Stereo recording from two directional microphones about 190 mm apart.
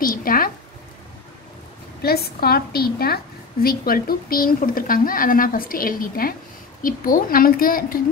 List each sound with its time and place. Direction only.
0.0 s speech: 50° left (ahead or behind)
2.0 s a woman's voice: 55° left (ahead or behind)